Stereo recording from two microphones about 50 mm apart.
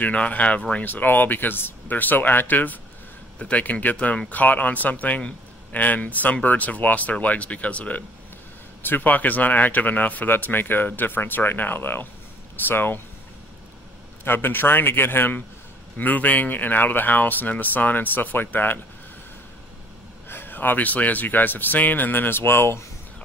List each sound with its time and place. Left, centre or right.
0.0 s speech: left
0.8 s speech: left
8.8 s a man's voice: left
14.2 s a man's voice: left
16.0 s speech: left
20.2 s speech: left